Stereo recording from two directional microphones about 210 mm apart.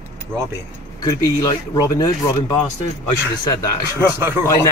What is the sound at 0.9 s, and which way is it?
Speech, 15° left (ahead or behind).